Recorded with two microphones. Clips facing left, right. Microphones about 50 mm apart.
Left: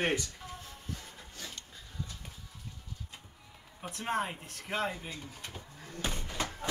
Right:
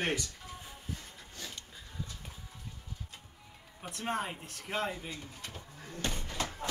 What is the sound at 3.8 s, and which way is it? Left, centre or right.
Speech, centre.